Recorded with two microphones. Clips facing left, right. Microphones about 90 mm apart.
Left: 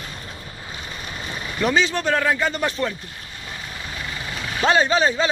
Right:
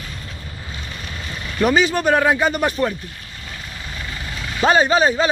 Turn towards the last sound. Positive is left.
turn(degrees=-5)  # may be behind; listen again after turning